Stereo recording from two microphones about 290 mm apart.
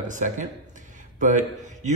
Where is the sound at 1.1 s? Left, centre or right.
Right.